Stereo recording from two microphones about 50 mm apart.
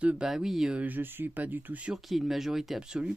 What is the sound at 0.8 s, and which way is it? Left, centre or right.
Speech, right.